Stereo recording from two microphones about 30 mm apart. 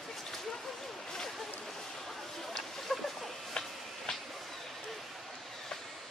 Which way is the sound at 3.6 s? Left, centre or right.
Left.